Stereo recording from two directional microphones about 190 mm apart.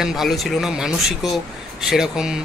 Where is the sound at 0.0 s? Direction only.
Centre (ahead or behind).